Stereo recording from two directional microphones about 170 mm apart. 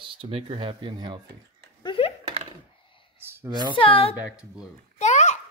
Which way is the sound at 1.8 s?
30° left (ahead or behind).